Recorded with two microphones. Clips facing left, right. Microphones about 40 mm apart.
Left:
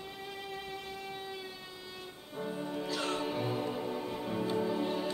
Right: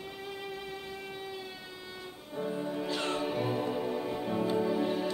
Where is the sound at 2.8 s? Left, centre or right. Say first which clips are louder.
Right 1 dB; right.